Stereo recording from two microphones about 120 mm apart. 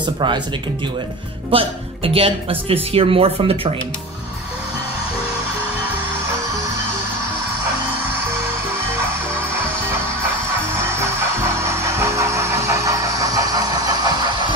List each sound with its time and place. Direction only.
0.0 s speech: 40° right (ahead or behind)
1.5 s speech: 50° right (ahead or behind)
10.7 s music: 25° right (ahead or behind)